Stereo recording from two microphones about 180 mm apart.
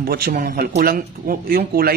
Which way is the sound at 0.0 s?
55° right (ahead or behind).